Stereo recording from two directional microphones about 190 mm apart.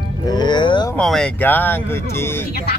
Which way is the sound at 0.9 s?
5° left (ahead or behind).